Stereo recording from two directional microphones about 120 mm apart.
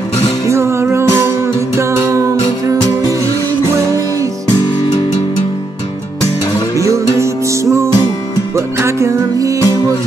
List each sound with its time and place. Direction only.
0.5 s music: 20° right (ahead or behind)
6.8 s music: 25° right (ahead or behind)